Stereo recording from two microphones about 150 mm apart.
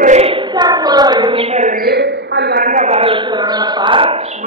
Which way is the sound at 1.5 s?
55° right (ahead or behind).